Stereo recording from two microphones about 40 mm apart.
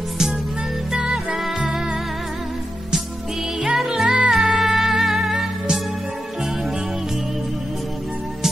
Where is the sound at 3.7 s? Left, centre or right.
Centre.